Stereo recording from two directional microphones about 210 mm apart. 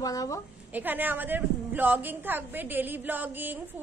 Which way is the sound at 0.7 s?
10° right (ahead or behind).